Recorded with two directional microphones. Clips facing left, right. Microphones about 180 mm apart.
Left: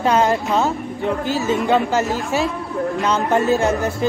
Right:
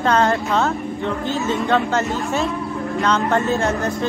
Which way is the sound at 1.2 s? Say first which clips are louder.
Left 1 dB; 5° left (ahead or behind).